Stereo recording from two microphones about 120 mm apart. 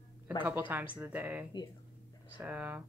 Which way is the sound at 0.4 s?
15° right (ahead or behind).